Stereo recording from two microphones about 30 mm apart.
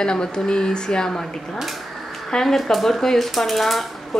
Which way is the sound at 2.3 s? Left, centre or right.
Centre.